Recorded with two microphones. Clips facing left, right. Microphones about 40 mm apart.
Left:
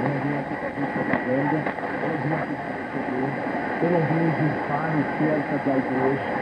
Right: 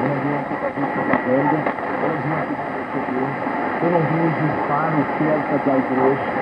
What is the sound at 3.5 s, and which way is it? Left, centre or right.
Speech, right.